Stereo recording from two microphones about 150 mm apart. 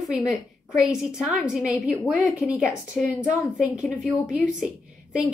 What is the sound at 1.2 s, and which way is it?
A woman's voice, centre (ahead or behind).